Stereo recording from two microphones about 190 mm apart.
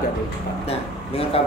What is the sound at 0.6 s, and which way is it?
Speech, 30° left (ahead or behind).